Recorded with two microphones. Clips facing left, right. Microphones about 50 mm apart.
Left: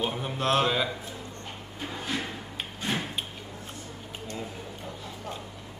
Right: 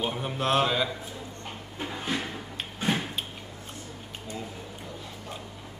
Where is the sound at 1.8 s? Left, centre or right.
Centre.